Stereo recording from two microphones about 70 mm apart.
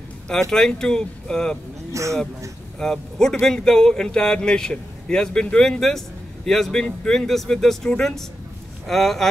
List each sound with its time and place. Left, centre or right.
0.3 s speech: centre
1.9 s speech: right
2.8 s speech: centre